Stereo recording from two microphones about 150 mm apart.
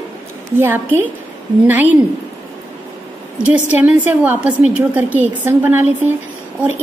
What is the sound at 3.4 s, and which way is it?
A woman's voice, 10° right (ahead or behind).